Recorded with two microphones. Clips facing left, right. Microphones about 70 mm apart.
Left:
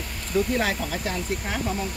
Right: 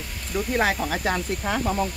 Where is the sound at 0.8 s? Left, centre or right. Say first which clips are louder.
Right 4 dB; right.